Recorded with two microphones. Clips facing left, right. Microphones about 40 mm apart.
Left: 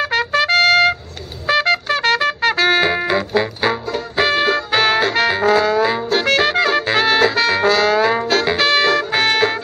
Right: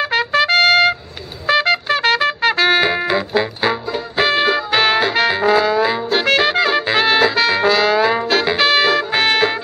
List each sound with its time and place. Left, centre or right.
0.0 s trumpet: centre